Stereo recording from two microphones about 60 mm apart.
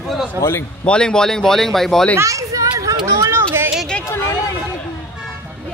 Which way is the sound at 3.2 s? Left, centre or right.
Right.